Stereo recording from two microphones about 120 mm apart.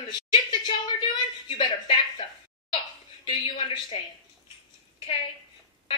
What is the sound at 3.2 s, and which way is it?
Speech, 45° left (ahead or behind).